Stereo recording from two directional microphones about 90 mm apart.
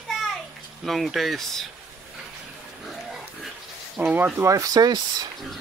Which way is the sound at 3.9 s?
15° right (ahead or behind).